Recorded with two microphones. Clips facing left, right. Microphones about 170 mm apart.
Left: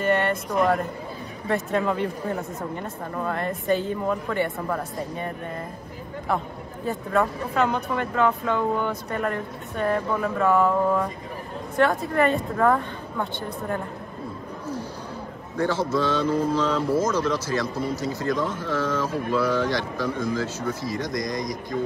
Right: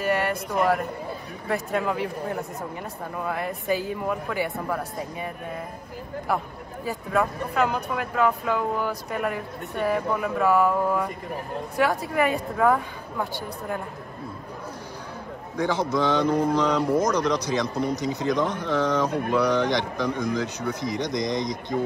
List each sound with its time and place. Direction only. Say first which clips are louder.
0.0 s speech: left 2 dB; centre (ahead or behind)
15.5 s speech: left 1 dB; 15° right (ahead or behind)